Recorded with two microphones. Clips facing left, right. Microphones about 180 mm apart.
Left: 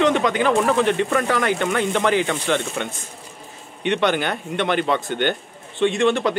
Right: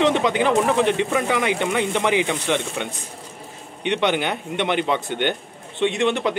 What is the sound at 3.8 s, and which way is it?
Speech, 15° right (ahead or behind).